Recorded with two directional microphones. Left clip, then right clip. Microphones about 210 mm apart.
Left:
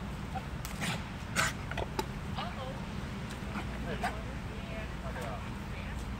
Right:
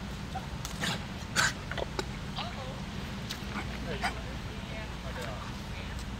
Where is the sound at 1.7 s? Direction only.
40° left (ahead or behind).